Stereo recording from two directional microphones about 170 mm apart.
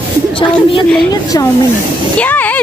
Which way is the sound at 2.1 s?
10° left (ahead or behind).